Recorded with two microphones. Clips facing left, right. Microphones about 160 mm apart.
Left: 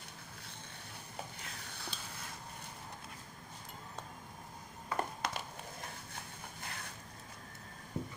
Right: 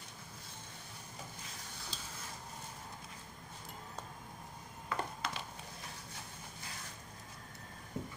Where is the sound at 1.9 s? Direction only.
65° left (ahead or behind).